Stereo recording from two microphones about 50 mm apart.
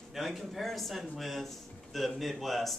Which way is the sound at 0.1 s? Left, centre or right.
Centre.